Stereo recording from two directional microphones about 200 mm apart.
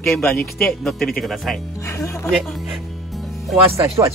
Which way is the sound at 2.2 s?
Centre (ahead or behind).